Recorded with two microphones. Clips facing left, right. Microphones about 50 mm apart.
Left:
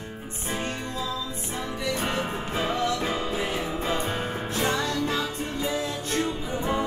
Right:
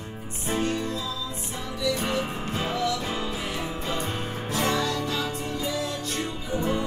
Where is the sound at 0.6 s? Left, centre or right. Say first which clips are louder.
Right 4 dB; left.